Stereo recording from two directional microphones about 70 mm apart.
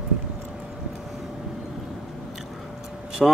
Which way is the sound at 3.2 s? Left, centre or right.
Centre.